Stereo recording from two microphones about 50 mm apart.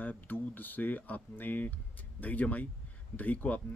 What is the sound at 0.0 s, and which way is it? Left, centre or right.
Speech, left.